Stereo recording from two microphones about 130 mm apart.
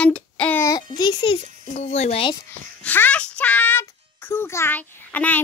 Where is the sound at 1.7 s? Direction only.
55° left (ahead or behind).